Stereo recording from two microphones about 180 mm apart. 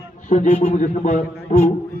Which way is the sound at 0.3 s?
45° left (ahead or behind).